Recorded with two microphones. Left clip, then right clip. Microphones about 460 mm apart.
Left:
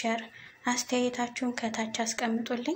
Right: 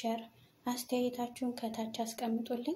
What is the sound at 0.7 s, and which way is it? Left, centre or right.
Speech, right.